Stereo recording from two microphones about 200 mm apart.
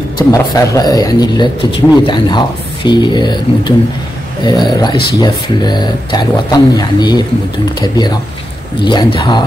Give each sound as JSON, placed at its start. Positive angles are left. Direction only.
{"t": 0.3, "sound": "speech", "side_deg": 20}